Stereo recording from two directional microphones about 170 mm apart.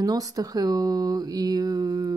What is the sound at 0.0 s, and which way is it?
Speech, 20° right (ahead or behind).